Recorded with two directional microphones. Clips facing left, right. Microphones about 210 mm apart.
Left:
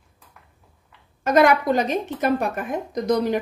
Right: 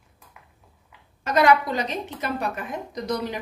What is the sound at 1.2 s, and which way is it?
A woman's voice, 50° left (ahead or behind).